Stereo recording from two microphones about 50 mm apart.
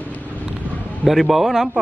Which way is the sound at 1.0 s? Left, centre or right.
Centre.